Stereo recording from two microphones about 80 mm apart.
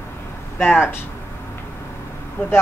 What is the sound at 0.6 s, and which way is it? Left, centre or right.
Speech, left.